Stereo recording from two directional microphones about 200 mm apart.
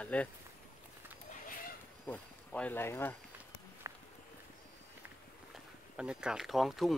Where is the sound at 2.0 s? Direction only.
5° left (ahead or behind).